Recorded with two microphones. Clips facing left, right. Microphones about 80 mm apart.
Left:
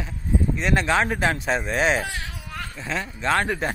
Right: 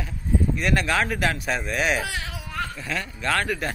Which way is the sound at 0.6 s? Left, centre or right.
Left.